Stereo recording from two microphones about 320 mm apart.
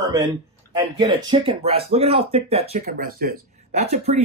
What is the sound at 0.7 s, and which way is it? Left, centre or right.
Speech, centre.